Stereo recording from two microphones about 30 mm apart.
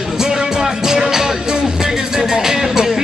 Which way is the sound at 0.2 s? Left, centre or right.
Centre.